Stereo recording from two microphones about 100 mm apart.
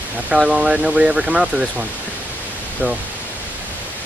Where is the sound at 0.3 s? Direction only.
10° right (ahead or behind).